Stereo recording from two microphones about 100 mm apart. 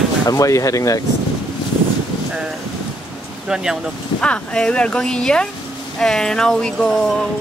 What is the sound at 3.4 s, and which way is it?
Speech, 5° right (ahead or behind).